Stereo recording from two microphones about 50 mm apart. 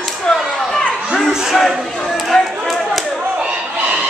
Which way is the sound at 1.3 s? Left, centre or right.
Centre.